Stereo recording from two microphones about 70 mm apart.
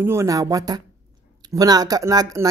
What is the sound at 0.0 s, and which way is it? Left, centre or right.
Speech, right.